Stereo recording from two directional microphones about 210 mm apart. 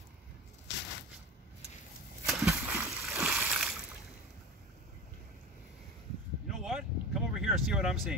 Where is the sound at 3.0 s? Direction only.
Centre (ahead or behind).